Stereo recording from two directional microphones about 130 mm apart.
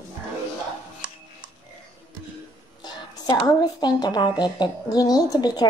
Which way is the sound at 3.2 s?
30° left (ahead or behind).